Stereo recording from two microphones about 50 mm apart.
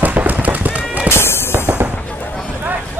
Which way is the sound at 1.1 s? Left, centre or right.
Left.